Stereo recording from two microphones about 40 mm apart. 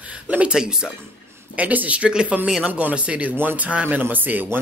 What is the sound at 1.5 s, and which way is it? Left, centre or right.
Speech, right.